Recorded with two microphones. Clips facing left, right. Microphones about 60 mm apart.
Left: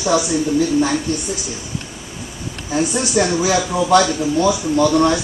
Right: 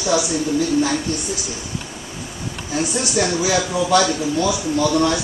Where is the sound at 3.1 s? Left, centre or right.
Left.